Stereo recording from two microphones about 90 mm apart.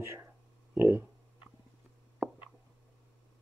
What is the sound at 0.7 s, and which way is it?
Speech, 20° right (ahead or behind).